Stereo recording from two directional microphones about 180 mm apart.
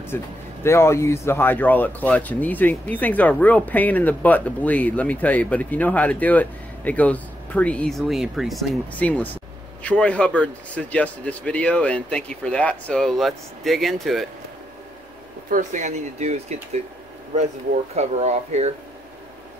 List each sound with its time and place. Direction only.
0.1 s speech: 15° left (ahead or behind)
15.5 s speech: 40° right (ahead or behind)
17.9 s speech: 40° right (ahead or behind)